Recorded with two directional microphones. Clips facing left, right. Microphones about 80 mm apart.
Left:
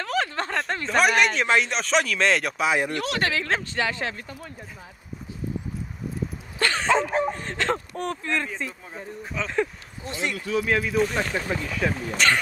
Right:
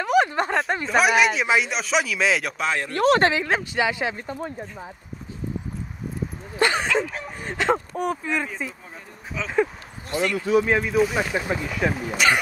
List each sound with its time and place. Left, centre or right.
0.0 s a sound: centre
0.6 s speech: centre
2.9 s speech: right
3.3 s speech: centre
4.3 s speech: right
6.6 s dog: centre
7.3 s speech: centre
10.3 s speech: right
10.8 s speech: centre